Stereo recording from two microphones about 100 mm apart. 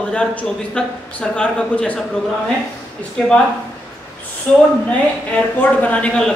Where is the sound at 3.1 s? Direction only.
10° left (ahead or behind).